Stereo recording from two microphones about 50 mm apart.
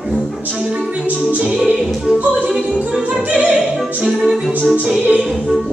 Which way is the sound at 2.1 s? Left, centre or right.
Right.